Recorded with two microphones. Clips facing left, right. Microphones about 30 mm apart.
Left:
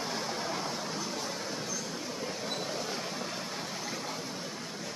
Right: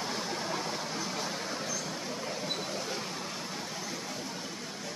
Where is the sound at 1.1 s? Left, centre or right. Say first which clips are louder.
Right 1 dB; centre.